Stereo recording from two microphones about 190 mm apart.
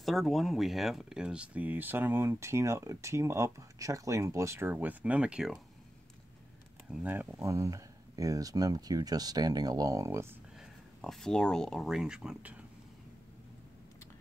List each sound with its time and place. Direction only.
0.0 s speech: centre (ahead or behind)
6.9 s speech: 10° right (ahead or behind)
10.6 s speech: centre (ahead or behind)